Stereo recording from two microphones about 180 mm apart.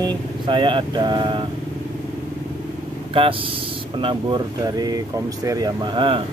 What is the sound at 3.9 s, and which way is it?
Speech, 25° right (ahead or behind).